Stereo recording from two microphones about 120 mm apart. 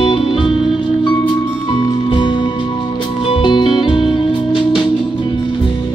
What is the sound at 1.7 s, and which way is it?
Music, 45° left (ahead or behind).